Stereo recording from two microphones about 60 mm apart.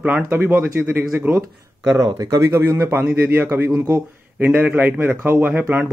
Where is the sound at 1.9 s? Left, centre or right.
Right.